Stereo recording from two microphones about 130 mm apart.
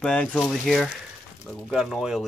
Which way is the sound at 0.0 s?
10° left (ahead or behind).